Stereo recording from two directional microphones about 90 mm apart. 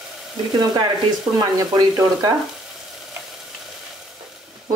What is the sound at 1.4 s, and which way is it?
Speech, 45° right (ahead or behind).